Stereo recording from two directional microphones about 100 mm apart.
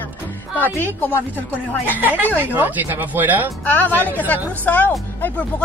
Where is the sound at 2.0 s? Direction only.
20° right (ahead or behind).